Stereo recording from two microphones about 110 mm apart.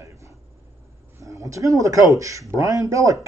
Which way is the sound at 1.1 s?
30° right (ahead or behind).